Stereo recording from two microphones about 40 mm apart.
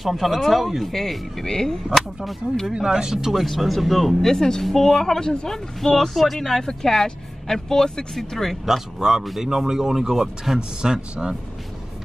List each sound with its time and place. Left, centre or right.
0.0 s speech: centre
2.7 s speech: centre
3.3 s speech: centre
4.2 s speech: centre
6.4 s speech: centre
8.6 s speech: centre